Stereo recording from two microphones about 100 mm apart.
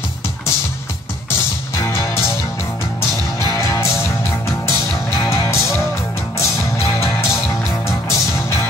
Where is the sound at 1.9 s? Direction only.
25° left (ahead or behind).